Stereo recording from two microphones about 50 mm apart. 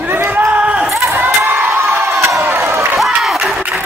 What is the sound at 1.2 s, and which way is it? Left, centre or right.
Crowd, right.